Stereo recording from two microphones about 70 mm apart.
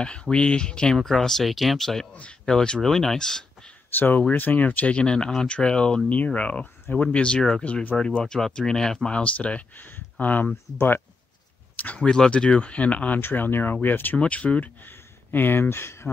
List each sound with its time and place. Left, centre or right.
0.0 s speech: centre
2.1 s speech: centre
3.9 s speech: left
8.2 s speech: centre; by 10.5 s left
11.8 s speech: centre; by 16.1 s left